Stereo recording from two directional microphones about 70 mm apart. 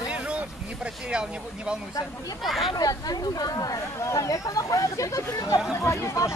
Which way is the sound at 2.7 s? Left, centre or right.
Left.